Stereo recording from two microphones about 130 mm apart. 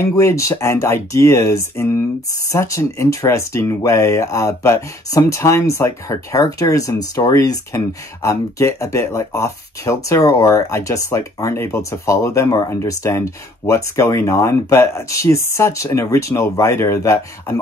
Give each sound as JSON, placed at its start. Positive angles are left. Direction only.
{"t": 0.0, "sound": "speech", "side_deg": 20}